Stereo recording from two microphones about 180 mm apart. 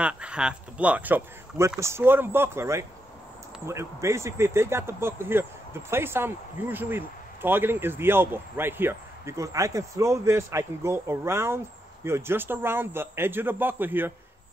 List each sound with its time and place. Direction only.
0.0 s speech: 5° right (ahead or behind)